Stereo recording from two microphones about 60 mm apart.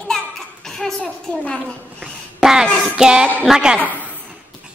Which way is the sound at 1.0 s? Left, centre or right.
Centre.